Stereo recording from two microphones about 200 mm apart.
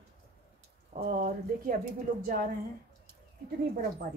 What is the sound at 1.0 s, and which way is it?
Speech, 45° right (ahead or behind).